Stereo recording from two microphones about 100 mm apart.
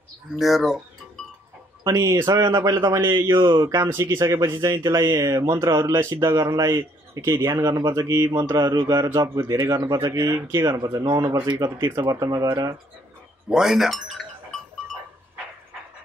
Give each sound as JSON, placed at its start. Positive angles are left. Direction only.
{"t": 0.4, "sound": "speech", "side_deg": 0}
{"t": 1.9, "sound": "speech", "side_deg": -30}
{"t": 3.3, "sound": "speech", "side_deg": -50}
{"t": 3.6, "sound": "speech", "side_deg": -30}
{"t": 11.9, "sound": "speech", "side_deg": -45}
{"t": 13.5, "sound": "speech", "side_deg": -5}